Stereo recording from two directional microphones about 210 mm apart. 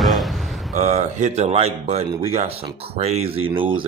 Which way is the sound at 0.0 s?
Centre (ahead or behind).